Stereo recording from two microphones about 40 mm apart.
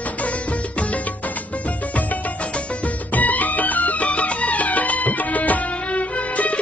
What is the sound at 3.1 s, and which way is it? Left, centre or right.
Music, left.